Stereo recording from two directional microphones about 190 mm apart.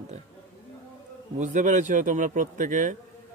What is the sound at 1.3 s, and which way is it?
A man's voice, 40° right (ahead or behind).